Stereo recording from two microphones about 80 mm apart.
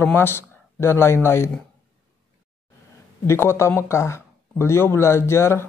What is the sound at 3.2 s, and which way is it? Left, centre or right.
Speech, left.